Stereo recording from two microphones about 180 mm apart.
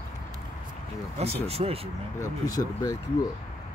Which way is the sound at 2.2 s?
20° left (ahead or behind).